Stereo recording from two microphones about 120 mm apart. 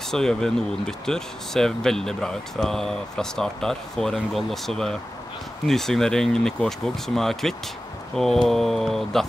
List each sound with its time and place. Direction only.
0.1 s speech: 5° left (ahead or behind)